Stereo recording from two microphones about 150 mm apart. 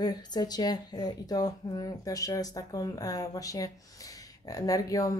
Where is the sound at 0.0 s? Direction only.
25° left (ahead or behind).